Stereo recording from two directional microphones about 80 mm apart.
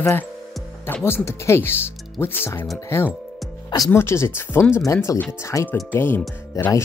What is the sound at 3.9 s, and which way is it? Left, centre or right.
Speech, left.